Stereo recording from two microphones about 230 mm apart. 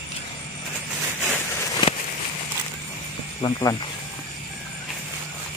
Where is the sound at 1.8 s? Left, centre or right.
Centre.